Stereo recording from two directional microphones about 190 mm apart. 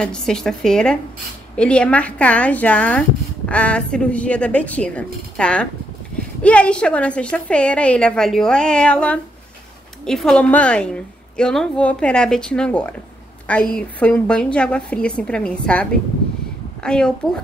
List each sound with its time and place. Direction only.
0.0 s a woman's voice: 5° left (ahead or behind)